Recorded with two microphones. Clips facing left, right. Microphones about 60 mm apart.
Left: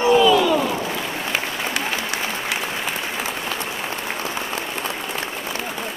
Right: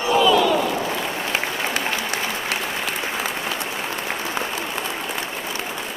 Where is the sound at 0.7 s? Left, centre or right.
Centre.